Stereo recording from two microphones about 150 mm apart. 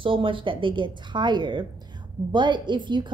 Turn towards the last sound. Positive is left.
turn(degrees=-30)  # may be behind; listen again after turning